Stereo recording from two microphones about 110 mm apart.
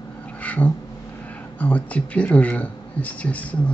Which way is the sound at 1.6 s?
10° left (ahead or behind).